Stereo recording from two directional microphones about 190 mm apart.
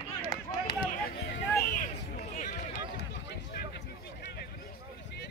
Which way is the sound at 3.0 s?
60° left (ahead or behind).